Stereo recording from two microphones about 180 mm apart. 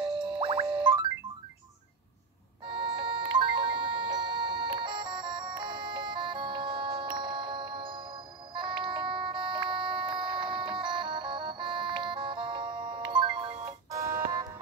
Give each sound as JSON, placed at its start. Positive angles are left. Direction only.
{"t": 0.0, "sound": "music", "side_deg": -30}
{"t": 2.6, "sound": "music", "side_deg": -25}